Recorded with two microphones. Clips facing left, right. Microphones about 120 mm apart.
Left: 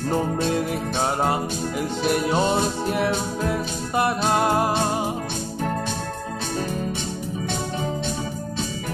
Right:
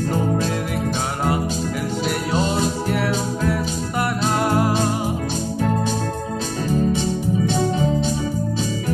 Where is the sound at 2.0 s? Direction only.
20° left (ahead or behind).